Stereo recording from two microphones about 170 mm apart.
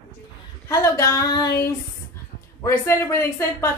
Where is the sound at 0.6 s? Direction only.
20° left (ahead or behind).